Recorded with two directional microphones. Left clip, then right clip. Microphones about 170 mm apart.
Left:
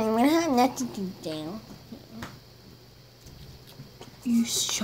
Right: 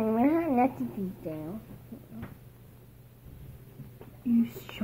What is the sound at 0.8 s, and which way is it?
Speech, 20° left (ahead or behind).